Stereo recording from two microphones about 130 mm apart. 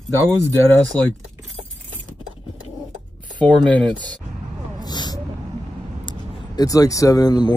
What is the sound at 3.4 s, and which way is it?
Speech, 10° left (ahead or behind).